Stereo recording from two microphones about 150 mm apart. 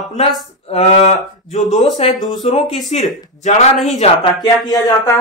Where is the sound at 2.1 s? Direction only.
Centre (ahead or behind).